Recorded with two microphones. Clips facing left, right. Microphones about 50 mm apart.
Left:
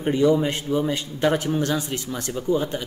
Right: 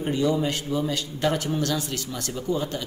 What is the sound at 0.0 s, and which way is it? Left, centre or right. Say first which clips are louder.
Speech: left 4 dB; left.